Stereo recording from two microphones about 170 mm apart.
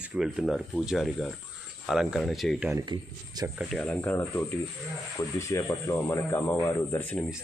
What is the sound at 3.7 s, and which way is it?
Speech, 5° left (ahead or behind).